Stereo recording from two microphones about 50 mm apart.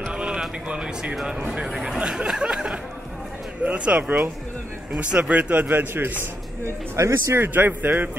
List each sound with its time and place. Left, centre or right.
0.0 s a sound: centre
0.7 s speech: right
1.5 s a sound: centre
3.6 s speech: right
5.3 s a man's voice: right
6.6 s speech: right
7.3 s a man's voice: right